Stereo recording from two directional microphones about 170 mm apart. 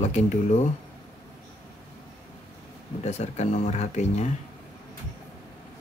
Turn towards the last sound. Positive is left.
turn(degrees=40)  # may be behind; listen again after turning